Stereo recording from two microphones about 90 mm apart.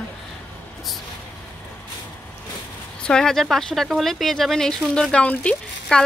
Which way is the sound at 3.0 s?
10° left (ahead or behind).